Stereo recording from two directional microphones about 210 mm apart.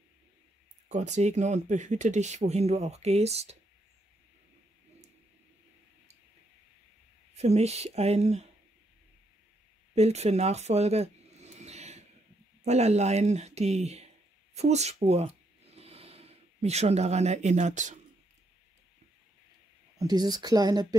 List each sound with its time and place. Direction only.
0.8 s speech: 35° right (ahead or behind)
7.3 s speech: 30° right (ahead or behind)
9.9 s a sound: 30° right (ahead or behind)
12.6 s speech: 30° right (ahead or behind)
20.0 s speech: 20° right (ahead or behind)